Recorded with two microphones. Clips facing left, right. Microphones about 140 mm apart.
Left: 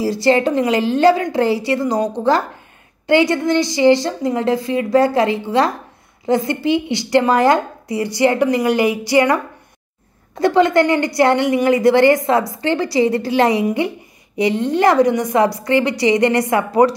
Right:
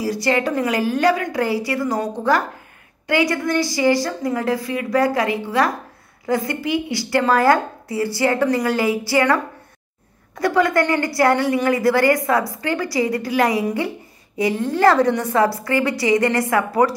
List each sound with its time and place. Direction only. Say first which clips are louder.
0.0 s a woman's voice: left 5 dB; 25° left (ahead or behind)